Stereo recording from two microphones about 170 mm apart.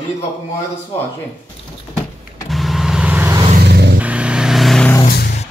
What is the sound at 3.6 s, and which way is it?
Vehicle, 75° right (ahead or behind).